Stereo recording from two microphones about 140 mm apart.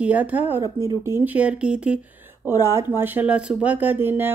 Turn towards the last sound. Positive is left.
turn(degrees=-15)  # may be behind; listen again after turning